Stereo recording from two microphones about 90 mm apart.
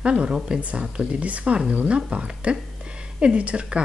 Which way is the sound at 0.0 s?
10° right (ahead or behind).